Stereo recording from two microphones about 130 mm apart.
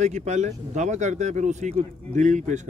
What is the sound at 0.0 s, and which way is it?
Mantra, 65° right (ahead or behind).